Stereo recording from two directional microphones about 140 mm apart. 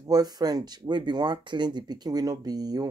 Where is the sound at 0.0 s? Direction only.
25° right (ahead or behind).